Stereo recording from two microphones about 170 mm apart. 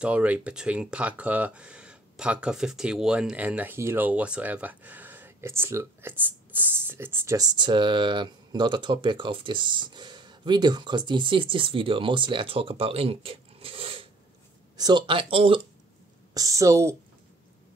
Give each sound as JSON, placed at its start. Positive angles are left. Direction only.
{"t": 0.0, "sound": "speech", "side_deg": -5}
{"t": 16.3, "sound": "speech", "side_deg": -20}